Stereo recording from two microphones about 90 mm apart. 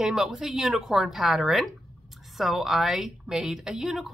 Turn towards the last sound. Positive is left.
turn(degrees=0)  # may be behind; listen again after turning